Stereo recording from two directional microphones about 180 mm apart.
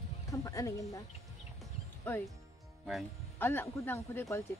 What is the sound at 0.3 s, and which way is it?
Speech, 20° left (ahead or behind).